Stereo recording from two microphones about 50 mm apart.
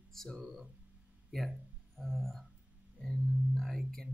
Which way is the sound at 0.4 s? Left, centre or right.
Centre.